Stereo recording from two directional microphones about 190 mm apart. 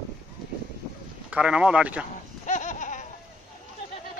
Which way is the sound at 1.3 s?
5° right (ahead or behind).